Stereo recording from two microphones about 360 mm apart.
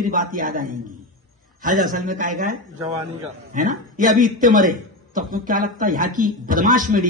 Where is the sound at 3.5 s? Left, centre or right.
Right.